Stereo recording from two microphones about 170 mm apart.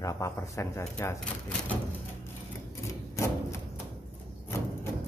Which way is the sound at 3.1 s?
15° left (ahead or behind).